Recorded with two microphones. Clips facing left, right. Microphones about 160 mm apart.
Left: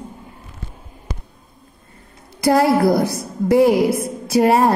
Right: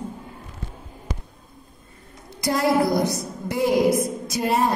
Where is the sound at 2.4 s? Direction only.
60° left (ahead or behind).